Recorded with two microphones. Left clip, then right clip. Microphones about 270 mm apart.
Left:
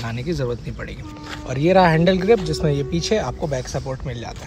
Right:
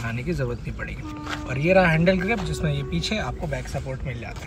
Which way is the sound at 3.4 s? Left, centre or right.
Left.